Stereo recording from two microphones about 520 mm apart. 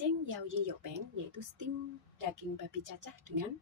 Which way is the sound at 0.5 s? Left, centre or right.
Right.